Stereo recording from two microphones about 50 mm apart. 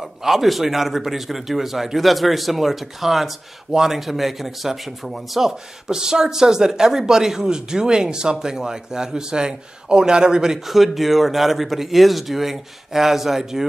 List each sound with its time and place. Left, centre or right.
0.0 s a man's voice: centre